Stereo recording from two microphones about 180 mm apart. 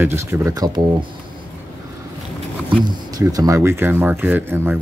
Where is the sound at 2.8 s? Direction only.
20° right (ahead or behind).